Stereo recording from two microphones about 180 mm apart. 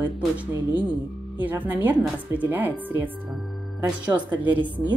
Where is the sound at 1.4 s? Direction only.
10° right (ahead or behind).